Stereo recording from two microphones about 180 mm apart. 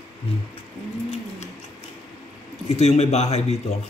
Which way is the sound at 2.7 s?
35° left (ahead or behind).